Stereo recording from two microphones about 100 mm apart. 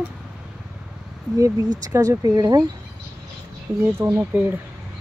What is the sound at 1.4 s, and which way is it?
Speech, 30° right (ahead or behind).